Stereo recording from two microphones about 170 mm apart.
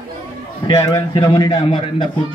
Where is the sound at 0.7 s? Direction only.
25° left (ahead or behind).